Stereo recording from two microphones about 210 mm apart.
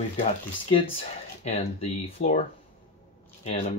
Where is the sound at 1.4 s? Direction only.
30° left (ahead or behind).